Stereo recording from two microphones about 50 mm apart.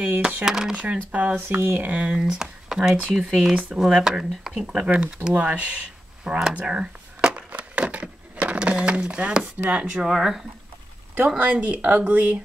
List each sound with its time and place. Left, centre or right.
0.5 s speech: centre
0.7 s speech: right
1.3 s speech: right
1.8 s speech: right; by 4.3 s centre
4.6 s speech: right
6.5 s a sound: centre
9.7 s speech: right
10.0 s speech: centre
11.3 s speech: right